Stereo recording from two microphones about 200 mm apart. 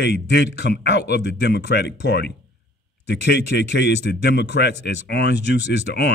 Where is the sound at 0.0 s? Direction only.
60° left (ahead or behind).